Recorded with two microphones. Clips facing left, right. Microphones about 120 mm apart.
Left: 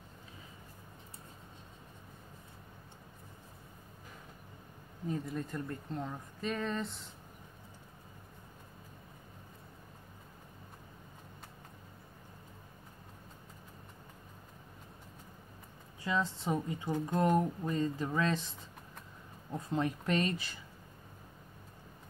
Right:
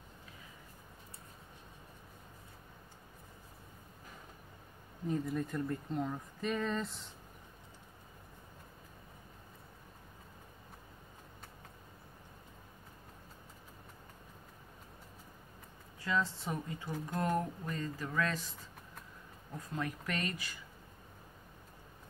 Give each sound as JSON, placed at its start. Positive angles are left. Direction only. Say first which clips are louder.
{"t": 5.0, "sound": "speech", "louder": "right 2 dB", "side_deg": 0}
{"t": 16.0, "sound": "speech", "louder": "left 1 dB", "side_deg": 20}